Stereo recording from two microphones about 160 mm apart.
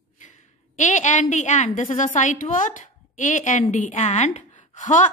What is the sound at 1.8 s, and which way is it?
A woman's voice, 50° left (ahead or behind).